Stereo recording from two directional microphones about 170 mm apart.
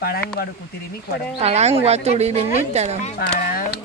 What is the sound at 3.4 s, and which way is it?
Speech, 60° left (ahead or behind).